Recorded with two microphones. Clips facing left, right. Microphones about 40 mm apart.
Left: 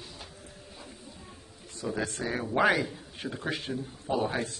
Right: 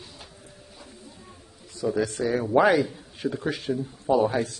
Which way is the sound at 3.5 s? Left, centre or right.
Left.